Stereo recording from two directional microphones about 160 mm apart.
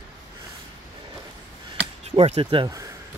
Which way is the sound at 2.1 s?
35° right (ahead or behind).